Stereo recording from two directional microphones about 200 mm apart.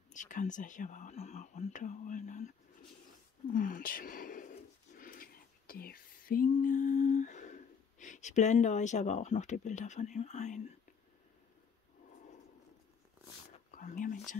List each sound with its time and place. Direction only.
0.1 s speech: 40° left (ahead or behind)
3.5 s speech: 45° left (ahead or behind)
13.7 s speech: 40° left (ahead or behind)